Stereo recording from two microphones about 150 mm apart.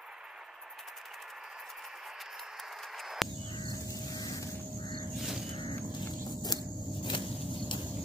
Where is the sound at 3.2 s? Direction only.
Centre (ahead or behind).